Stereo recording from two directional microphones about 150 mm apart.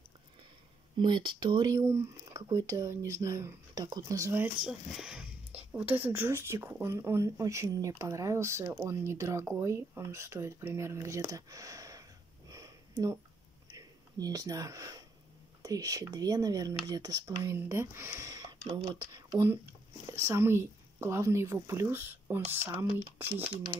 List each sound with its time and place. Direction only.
0.9 s speech: 30° right (ahead or behind)
4.6 s speech: 5° right (ahead or behind); by 13.2 s 20° right (ahead or behind)
13.7 s a sound: 25° right (ahead or behind)
15.6 s speech: 25° right (ahead or behind)